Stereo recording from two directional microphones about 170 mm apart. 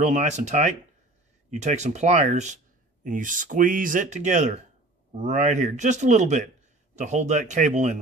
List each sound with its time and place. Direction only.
0.0 s speech: 45° right (ahead or behind)